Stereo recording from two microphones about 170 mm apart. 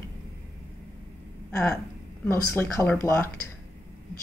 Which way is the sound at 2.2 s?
15° left (ahead or behind).